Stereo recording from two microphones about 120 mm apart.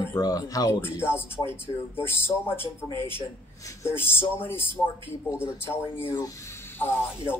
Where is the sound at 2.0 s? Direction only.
20° left (ahead or behind).